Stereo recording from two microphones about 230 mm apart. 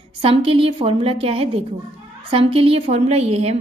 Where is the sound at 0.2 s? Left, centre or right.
Right.